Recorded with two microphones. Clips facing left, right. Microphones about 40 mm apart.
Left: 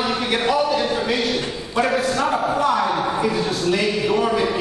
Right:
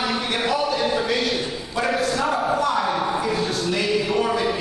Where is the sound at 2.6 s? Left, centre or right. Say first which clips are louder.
Left 2 dB; centre.